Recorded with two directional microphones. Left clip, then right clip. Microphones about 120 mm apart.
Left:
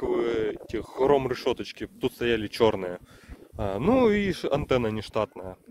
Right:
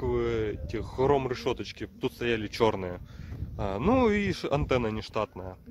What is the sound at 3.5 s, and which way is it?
Speech, 15° left (ahead or behind).